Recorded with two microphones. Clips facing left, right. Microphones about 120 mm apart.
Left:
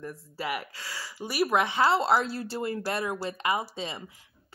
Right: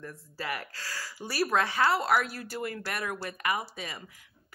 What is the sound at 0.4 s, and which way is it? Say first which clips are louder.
Speech: left 3 dB; 20° left (ahead or behind).